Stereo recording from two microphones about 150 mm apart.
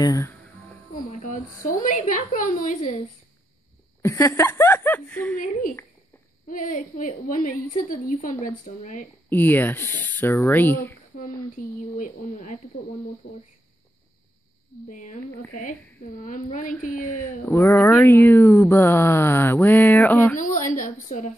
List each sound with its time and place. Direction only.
0.0 s speech: 20° left (ahead or behind)
1.2 s a woman's voice: 65° left (ahead or behind)
4.0 s speech: 20° left (ahead or behind)
5.4 s a woman's voice: 65° left (ahead or behind)
9.3 s speech: 15° left (ahead or behind)
11.6 s speech: 70° left (ahead or behind)
12.0 s speech: 50° left (ahead or behind)
14.9 s a woman's voice: 55° left (ahead or behind)
17.0 s speech: 15° left (ahead or behind)
20.3 s a woman's voice: 60° left (ahead or behind)